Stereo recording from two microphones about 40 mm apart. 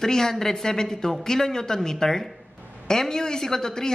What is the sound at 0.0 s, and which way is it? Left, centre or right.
A woman's voice, centre.